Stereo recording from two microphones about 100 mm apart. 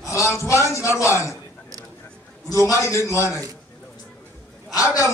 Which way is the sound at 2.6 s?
30° left (ahead or behind).